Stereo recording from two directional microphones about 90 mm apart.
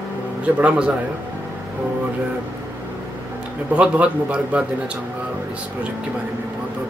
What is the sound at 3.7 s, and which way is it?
Speech, 15° right (ahead or behind).